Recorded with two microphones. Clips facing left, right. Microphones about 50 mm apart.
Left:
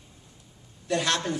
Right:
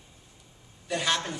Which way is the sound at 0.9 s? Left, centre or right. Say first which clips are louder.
Left 2 dB; centre.